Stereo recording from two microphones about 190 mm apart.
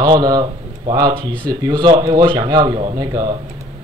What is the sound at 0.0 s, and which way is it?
Speech, 20° right (ahead or behind).